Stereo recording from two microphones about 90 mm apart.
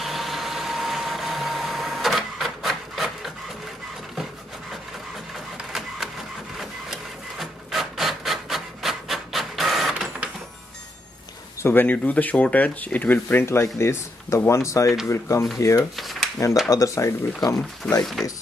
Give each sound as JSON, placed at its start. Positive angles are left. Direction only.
{"t": 0.0, "sound": "vehicle", "side_deg": 0}
{"t": 5.7, "sound": "printer", "side_deg": -5}
{"t": 6.9, "sound": "rub", "side_deg": 0}
{"t": 11.6, "sound": "speech", "side_deg": 20}
{"t": 16.0, "sound": "a sound", "side_deg": 0}
{"t": 16.6, "sound": "speech", "side_deg": 40}